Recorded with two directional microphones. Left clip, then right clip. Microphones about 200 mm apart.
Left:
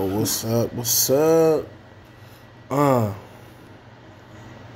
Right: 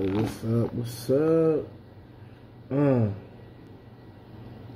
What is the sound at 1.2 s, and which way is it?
Speech, 90° left.